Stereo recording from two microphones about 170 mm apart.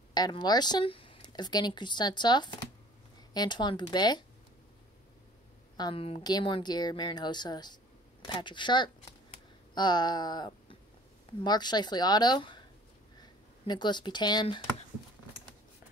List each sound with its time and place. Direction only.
0.1 s speech: 25° left (ahead or behind)
5.8 s speech: 30° left (ahead or behind)